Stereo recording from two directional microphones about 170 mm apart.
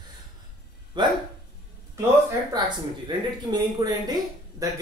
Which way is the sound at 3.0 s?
25° right (ahead or behind).